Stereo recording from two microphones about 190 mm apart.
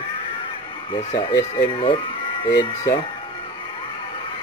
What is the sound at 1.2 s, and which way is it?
Speech, 25° left (ahead or behind).